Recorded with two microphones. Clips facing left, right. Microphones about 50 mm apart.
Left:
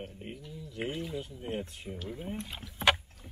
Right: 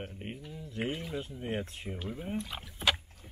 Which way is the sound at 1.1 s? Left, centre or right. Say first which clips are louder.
Right 1 dB; right.